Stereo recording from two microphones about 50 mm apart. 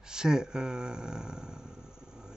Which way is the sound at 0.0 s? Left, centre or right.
Centre.